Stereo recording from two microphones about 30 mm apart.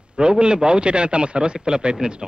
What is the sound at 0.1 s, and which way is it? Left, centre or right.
A man's voice, right.